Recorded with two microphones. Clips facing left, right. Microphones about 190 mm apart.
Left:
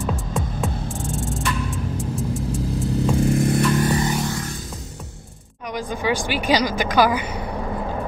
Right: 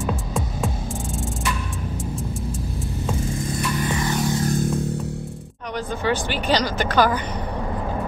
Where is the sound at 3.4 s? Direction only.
65° left (ahead or behind).